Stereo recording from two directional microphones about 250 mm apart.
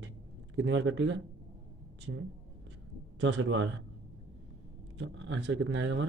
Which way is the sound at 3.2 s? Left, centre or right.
Right.